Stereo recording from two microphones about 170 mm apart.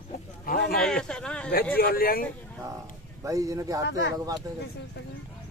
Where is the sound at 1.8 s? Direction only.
60° left (ahead or behind).